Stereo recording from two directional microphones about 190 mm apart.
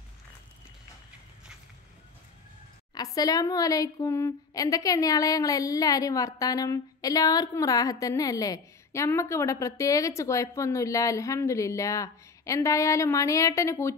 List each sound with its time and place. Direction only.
2.9 s a woman's voice: 20° left (ahead or behind)